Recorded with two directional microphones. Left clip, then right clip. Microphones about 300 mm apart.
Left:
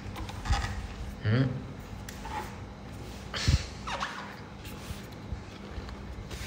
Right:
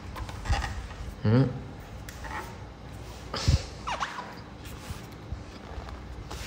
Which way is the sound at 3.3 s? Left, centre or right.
Centre.